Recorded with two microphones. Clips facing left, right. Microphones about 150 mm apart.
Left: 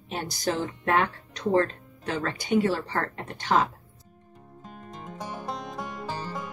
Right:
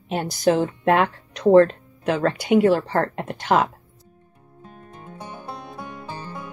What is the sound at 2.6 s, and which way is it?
A woman's voice, 50° right (ahead or behind).